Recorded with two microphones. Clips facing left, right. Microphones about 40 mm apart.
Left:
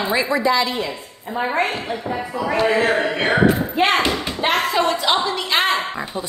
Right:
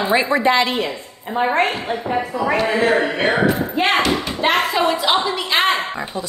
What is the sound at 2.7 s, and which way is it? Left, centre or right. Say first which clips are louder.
A woman's voice: right 1 dB; centre.